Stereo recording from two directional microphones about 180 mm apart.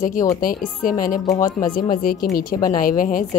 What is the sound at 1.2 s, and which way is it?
Speech, 20° left (ahead or behind).